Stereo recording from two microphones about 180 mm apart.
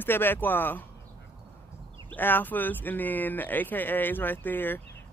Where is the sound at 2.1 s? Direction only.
10° left (ahead or behind).